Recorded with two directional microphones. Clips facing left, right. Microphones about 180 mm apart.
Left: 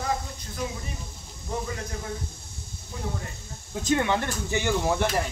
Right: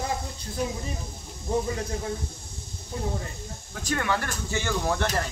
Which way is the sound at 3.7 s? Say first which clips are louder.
Left 4 dB; 20° left (ahead or behind).